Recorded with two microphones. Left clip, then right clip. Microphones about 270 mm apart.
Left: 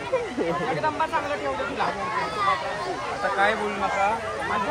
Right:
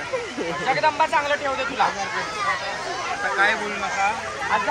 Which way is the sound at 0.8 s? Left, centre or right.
Right.